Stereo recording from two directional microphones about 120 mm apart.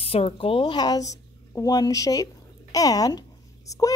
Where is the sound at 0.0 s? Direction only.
55° left (ahead or behind).